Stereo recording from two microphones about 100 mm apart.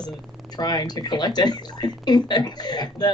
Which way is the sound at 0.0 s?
45° left (ahead or behind).